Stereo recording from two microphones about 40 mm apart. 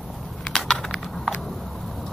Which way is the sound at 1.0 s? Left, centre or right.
Centre.